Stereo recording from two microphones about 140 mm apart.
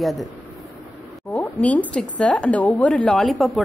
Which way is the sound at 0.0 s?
Centre (ahead or behind).